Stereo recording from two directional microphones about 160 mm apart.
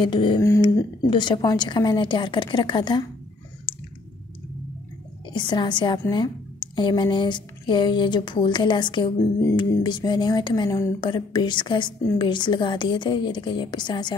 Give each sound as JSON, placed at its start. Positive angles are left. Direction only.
{"t": 0.0, "sound": "speech", "side_deg": 30}
{"t": 5.3, "sound": "speech", "side_deg": 30}